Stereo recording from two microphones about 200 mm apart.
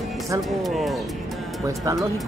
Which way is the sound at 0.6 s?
Centre (ahead or behind).